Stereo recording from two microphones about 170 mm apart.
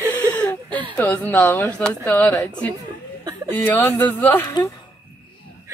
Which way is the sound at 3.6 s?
10° left (ahead or behind).